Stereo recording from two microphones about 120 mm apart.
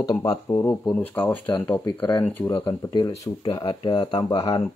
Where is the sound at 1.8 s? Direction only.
40° left (ahead or behind).